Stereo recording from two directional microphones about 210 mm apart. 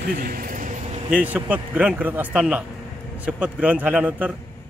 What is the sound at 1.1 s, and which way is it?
Speech, 5° right (ahead or behind).